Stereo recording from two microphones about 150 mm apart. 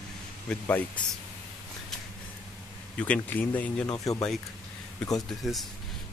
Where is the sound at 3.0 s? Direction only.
10° left (ahead or behind).